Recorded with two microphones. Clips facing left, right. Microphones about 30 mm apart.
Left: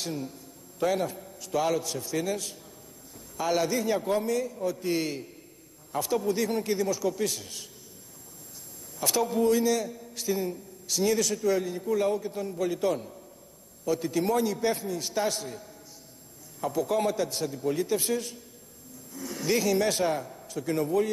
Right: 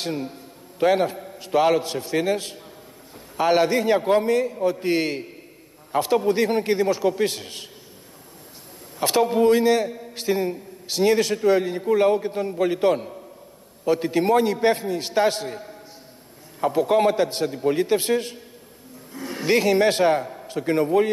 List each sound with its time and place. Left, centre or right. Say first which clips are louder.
0.0 s a man's voice: right 6 dB; right
9.0 s a man's voice: right 7 dB; right